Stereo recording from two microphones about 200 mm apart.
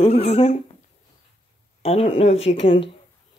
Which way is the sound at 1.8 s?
30° left (ahead or behind).